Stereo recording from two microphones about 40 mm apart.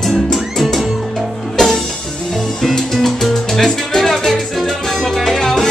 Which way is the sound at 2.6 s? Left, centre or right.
Centre.